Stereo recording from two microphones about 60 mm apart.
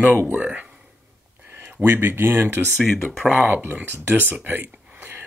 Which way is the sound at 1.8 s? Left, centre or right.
Right.